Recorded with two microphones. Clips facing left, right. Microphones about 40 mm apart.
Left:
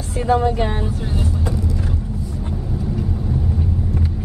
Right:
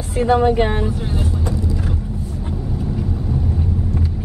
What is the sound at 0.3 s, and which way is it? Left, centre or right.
Speech, right.